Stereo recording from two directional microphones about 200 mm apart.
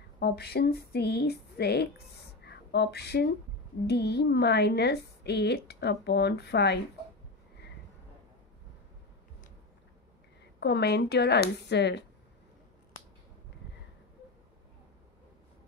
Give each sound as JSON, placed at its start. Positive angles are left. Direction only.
{"t": 0.2, "sound": "speech", "side_deg": 50}
{"t": 2.4, "sound": "a sound", "side_deg": 55}
{"t": 3.8, "sound": "a woman's voice", "side_deg": 55}
{"t": 10.6, "sound": "a woman's voice", "side_deg": 55}